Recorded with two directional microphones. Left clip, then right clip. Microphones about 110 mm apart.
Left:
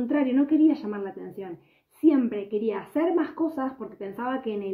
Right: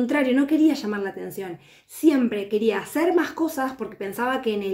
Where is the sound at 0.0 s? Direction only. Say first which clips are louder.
Right 3 dB; 15° right (ahead or behind).